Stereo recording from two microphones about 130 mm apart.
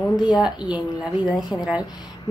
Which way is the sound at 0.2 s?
5° right (ahead or behind).